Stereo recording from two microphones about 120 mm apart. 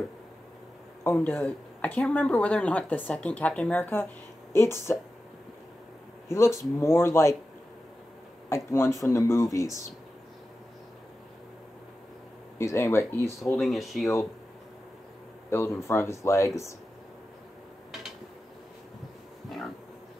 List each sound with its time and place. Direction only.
1.0 s speech: 15° left (ahead or behind)
6.2 s speech: 25° left (ahead or behind)
8.5 s speech: 20° left (ahead or behind)
12.5 s speech: 25° left (ahead or behind)
13.6 s speech: centre (ahead or behind)
15.5 s speech: 20° left (ahead or behind)